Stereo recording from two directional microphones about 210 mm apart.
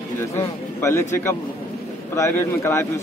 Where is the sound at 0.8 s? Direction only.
10° left (ahead or behind).